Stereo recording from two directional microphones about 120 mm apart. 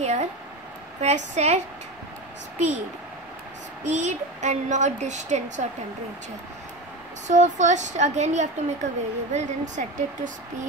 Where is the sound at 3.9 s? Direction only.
80° right.